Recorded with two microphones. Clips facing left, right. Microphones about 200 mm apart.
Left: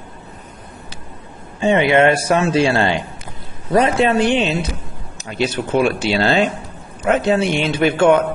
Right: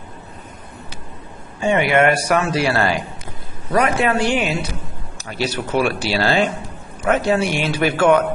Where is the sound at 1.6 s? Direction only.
20° left (ahead or behind).